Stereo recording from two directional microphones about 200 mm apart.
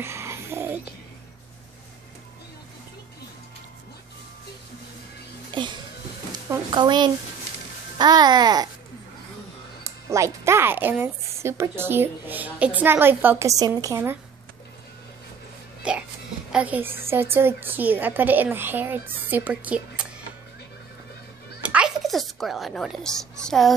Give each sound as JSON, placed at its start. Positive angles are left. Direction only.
{"t": 0.0, "sound": "a sound", "side_deg": -15}
{"t": 5.5, "sound": "music", "side_deg": -20}
{"t": 6.3, "sound": "a child's voice", "side_deg": -20}
{"t": 9.8, "sound": "speech", "side_deg": -15}
{"t": 15.9, "sound": "speech", "side_deg": -5}
{"t": 21.6, "sound": "a woman's voice", "side_deg": -5}